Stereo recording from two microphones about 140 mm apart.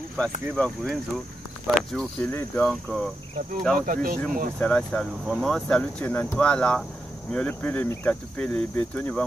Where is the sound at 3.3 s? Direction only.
65° right (ahead or behind).